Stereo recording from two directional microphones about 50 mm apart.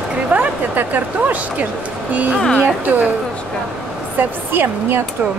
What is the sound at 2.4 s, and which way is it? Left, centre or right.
Speech, centre.